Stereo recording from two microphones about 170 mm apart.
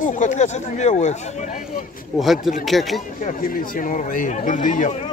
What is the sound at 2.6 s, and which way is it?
Speech, centre (ahead or behind).